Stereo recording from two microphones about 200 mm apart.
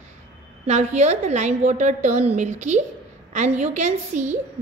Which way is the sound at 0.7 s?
35° right (ahead or behind).